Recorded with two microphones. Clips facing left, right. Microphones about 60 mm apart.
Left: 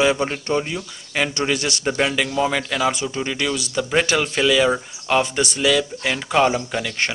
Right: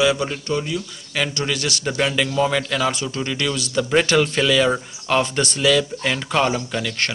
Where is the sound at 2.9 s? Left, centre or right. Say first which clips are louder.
Left 1 dB; centre.